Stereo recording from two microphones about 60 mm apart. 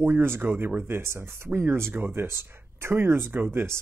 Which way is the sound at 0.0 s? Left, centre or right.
Right.